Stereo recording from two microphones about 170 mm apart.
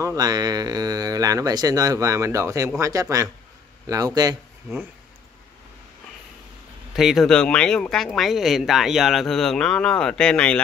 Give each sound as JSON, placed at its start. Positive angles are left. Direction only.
{"t": 0.0, "sound": "speech", "side_deg": -20}
{"t": 7.0, "sound": "speech", "side_deg": 0}